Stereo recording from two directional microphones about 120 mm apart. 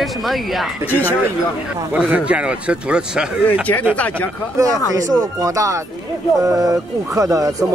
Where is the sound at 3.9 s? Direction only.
15° left (ahead or behind).